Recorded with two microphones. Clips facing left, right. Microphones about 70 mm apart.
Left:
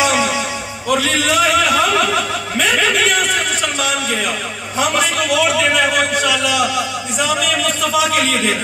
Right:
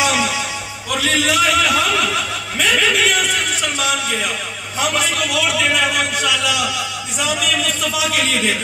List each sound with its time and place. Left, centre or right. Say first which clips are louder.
0.0 s music: left 2 dB; centre
0.8 s a sound: left 2 dB; centre
4.7 s a man's voice: left 3 dB; centre